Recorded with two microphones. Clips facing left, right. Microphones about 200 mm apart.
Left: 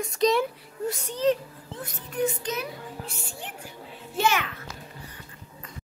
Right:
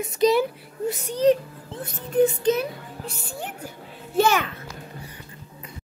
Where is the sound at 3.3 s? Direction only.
40° right (ahead or behind).